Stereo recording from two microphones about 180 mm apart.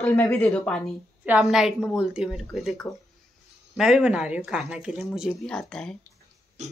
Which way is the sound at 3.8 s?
5° right (ahead or behind).